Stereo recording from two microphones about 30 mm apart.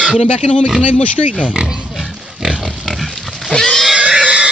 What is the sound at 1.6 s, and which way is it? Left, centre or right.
Speech, right.